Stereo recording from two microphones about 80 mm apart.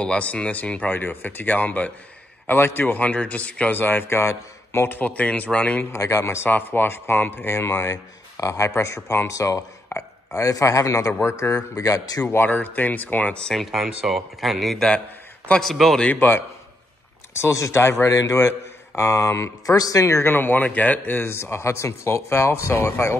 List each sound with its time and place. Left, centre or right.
0.0 s a man's voice: centre; by 4.8 s left
4.8 s a man's voice: left
5.9 s a man's voice: left
7.8 s speech: left
12.4 s a man's voice: left
13.6 s speech: centre
16.1 s a man's voice: left
17.4 s speech: left